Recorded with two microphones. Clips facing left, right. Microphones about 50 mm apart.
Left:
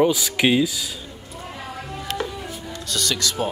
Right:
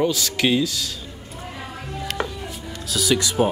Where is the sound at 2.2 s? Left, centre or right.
Centre.